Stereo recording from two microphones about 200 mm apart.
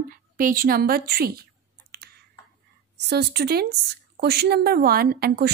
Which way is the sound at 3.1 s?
55° right (ahead or behind).